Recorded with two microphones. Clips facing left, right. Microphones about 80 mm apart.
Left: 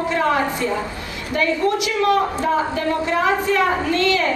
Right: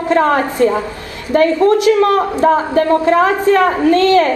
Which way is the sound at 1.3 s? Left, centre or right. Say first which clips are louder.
Right 9 dB; right.